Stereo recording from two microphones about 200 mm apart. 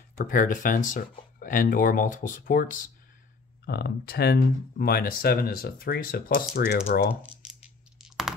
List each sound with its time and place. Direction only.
0.2 s speech: 40° left (ahead or behind)